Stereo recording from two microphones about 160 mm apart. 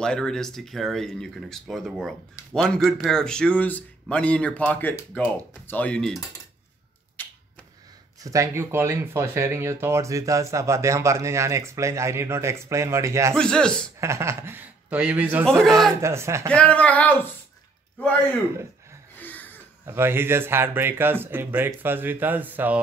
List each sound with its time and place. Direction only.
0.0 s speech: 5° left (ahead or behind)
7.2 s finger snapping: 10° left (ahead or behind)
8.2 s speech: 20° right (ahead or behind)
13.4 s speech: 5° left (ahead or behind)
13.9 s a man's voice: 20° right (ahead or behind)
15.4 s speech: 5° left (ahead or behind)
16.0 s speech: 15° right (ahead or behind)
16.4 s speech: 5° left (ahead or behind)
19.1 s chuckle: 10° left (ahead or behind)
19.8 s speech: 15° right (ahead or behind)